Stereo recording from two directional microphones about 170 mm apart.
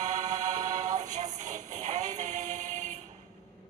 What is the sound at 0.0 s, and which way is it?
Music, 45° right (ahead or behind).